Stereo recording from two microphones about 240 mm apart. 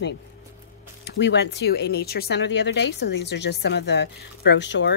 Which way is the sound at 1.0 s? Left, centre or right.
Left.